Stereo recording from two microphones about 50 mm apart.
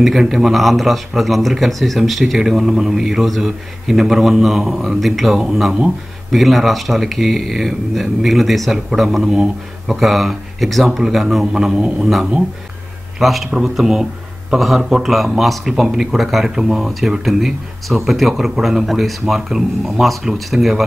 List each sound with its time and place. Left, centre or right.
0.0 s speech: centre
2.3 s a man's voice: centre
11.5 s a man's voice: centre
12.0 s a man's voice: centre